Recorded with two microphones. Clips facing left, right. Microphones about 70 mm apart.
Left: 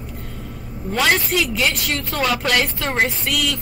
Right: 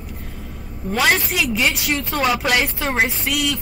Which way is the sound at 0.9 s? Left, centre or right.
Centre.